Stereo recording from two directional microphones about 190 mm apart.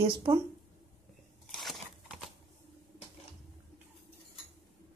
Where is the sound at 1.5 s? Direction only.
Centre (ahead or behind).